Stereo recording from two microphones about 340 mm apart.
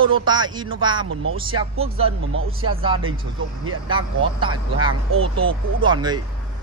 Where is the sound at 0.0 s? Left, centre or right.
Centre.